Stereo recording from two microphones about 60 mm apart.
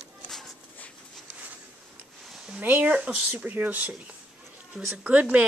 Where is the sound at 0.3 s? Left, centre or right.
Centre.